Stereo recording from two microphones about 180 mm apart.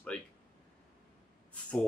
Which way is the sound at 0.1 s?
5° left (ahead or behind).